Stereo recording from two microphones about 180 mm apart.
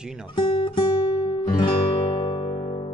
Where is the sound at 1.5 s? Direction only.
25° left (ahead or behind).